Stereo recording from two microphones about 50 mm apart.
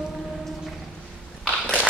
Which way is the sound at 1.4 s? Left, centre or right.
Left.